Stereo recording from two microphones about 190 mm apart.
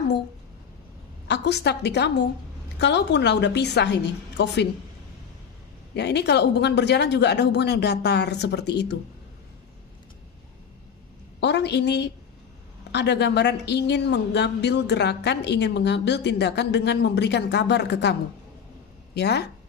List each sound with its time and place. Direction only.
1.2 s speech: 65° left (ahead or behind)
5.9 s speech: 60° left (ahead or behind)
11.3 s a woman's voice: 60° left (ahead or behind)
19.1 s speech: 60° left (ahead or behind)